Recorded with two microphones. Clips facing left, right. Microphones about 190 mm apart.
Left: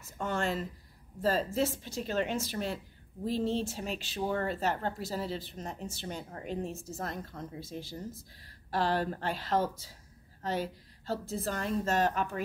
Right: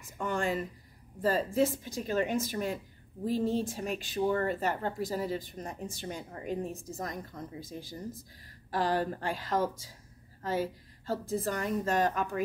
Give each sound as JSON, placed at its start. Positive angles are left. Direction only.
{"t": 0.0, "sound": "a woman's voice", "side_deg": -15}